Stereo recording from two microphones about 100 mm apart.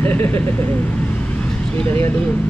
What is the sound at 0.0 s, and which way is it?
Speech, 20° left (ahead or behind).